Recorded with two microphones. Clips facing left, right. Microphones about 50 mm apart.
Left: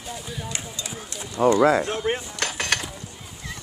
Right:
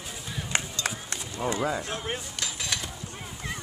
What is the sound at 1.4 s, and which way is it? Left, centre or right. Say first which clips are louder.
Speech: left 11 dB; left.